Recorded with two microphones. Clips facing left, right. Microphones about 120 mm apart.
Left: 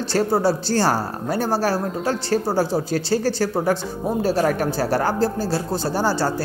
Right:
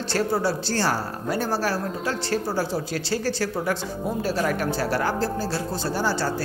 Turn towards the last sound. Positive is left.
turn(degrees=35)  # may be behind; listen again after turning